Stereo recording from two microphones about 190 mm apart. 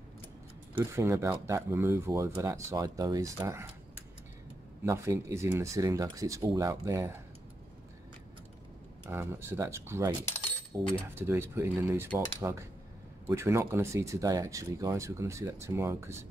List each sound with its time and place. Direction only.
0.7 s speech: 15° right (ahead or behind)
4.8 s speech: 15° right (ahead or behind)
9.1 s speech: 10° right (ahead or behind)